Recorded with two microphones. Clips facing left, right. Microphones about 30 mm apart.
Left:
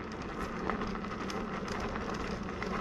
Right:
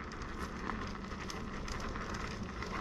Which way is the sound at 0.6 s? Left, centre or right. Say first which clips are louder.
Left 7 dB; centre.